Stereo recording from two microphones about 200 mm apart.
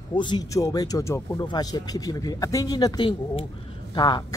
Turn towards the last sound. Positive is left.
turn(degrees=20)  # may be behind; listen again after turning